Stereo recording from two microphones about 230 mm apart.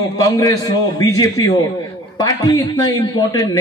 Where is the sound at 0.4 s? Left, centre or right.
Centre.